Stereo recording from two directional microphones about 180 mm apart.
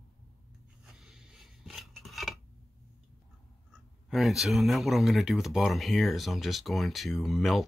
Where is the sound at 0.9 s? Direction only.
5° right (ahead or behind).